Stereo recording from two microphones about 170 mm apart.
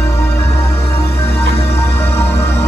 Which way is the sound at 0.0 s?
15° left (ahead or behind).